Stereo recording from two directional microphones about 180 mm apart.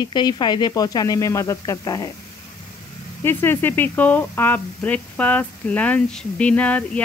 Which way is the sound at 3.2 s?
10° left (ahead or behind).